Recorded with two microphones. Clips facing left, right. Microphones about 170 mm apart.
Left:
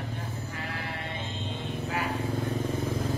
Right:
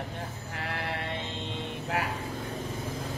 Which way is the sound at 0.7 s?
70° right (ahead or behind).